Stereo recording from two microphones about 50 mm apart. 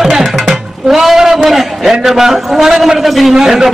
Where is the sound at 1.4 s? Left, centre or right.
Centre.